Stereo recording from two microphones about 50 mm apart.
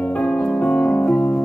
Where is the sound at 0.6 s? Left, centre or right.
Centre.